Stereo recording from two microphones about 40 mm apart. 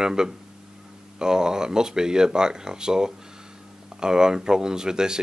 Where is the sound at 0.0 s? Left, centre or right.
Centre.